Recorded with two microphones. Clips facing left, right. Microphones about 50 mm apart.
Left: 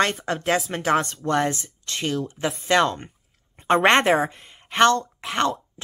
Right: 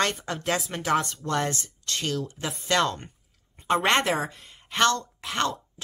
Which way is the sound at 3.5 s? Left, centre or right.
Left.